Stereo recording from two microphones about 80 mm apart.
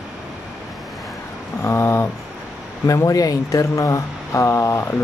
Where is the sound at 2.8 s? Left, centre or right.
Left.